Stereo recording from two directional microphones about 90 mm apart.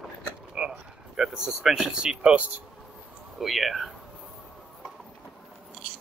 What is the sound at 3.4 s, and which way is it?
Speech, centre (ahead or behind).